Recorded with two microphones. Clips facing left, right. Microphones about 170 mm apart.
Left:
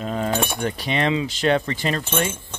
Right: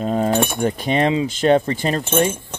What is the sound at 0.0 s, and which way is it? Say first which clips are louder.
Cutlery: right 5 dB; 40° right (ahead or behind).